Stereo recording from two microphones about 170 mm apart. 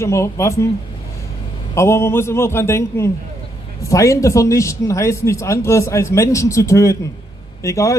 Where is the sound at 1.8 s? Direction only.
15° left (ahead or behind).